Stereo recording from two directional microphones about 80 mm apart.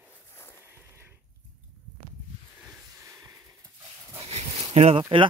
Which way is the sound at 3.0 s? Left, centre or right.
Right.